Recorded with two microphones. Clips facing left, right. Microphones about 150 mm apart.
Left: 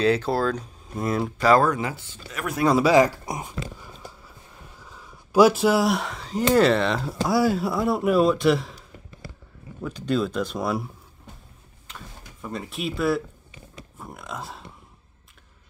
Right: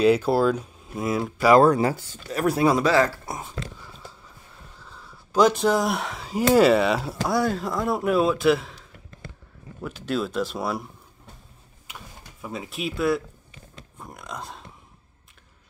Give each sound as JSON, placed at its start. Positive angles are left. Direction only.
{"t": 0.0, "sound": "speech", "side_deg": -10}
{"t": 1.6, "sound": "speech", "side_deg": -35}
{"t": 2.8, "sound": "speech", "side_deg": 15}
{"t": 4.8, "sound": "speech", "side_deg": 10}
{"t": 11.9, "sound": "tick-tock", "side_deg": -5}
{"t": 13.9, "sound": "speech", "side_deg": 0}